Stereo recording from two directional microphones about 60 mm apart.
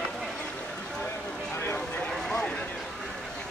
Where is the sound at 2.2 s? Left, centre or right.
Centre.